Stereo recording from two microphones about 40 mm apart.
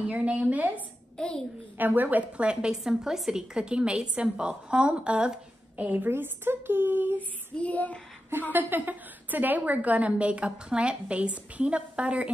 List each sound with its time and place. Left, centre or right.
0.1 s a woman's voice: right
1.1 s a child's voice: centre
1.8 s a woman's voice: right
2.3 s a woman's voice: right
2.8 s a woman's voice: centre
3.5 s a woman's voice: right
5.8 s a woman's voice: right
6.0 s speech: right
7.2 s female singing: left
8.3 s a woman's voice: right